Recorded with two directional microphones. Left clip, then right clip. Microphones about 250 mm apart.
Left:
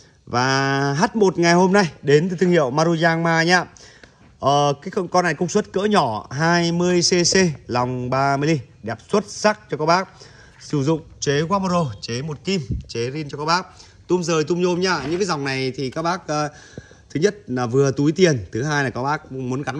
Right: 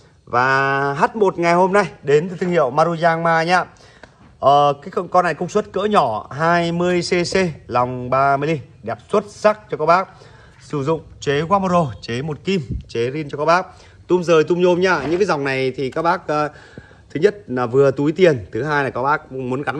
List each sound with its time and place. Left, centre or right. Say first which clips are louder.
0.3 s a man's voice: right 4 dB; left